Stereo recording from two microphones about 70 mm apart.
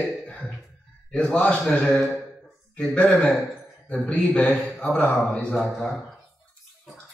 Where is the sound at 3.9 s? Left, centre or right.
Centre.